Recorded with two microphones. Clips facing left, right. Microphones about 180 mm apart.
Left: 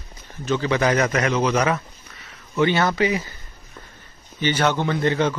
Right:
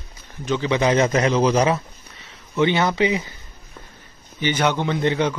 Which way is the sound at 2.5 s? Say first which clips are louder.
Even; 15° right (ahead or behind).